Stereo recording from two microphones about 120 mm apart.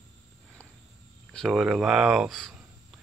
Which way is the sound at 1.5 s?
5° right (ahead or behind).